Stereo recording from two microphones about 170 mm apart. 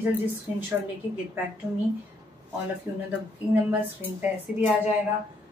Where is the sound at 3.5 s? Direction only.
10° right (ahead or behind).